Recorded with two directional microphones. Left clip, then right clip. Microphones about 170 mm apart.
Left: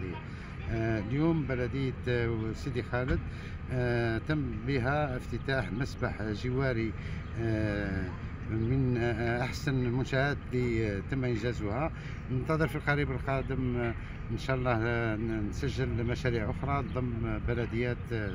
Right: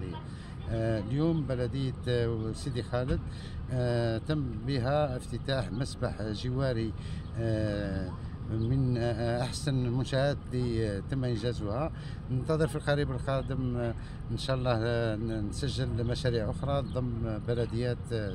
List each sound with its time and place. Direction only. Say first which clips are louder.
0.7 s speech: right 1 dB; 30° right (ahead or behind)
7.3 s speech: even; 30° right (ahead or behind)